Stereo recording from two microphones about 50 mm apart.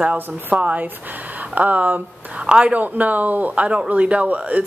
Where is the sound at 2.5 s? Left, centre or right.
Centre.